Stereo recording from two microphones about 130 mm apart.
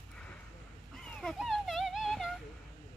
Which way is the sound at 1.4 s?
Centre (ahead or behind).